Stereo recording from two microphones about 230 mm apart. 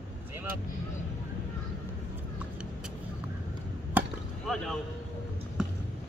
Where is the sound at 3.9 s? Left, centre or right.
Centre.